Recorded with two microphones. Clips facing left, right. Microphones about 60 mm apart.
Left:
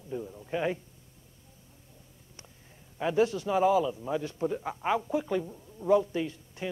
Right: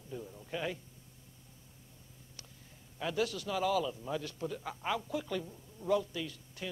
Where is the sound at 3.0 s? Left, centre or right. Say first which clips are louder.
Left 8 dB; left.